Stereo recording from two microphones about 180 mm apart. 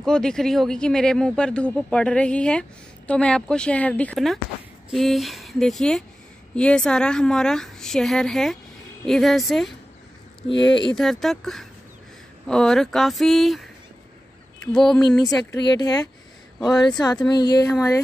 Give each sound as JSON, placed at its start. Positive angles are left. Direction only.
{"t": 0.0, "sound": "speech", "side_deg": 5}
{"t": 10.6, "sound": "speech", "side_deg": 25}
{"t": 11.0, "sound": "speech", "side_deg": 0}
{"t": 15.0, "sound": "speech", "side_deg": 20}